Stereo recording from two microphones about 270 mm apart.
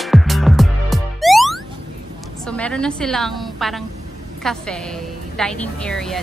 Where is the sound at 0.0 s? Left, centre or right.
Centre.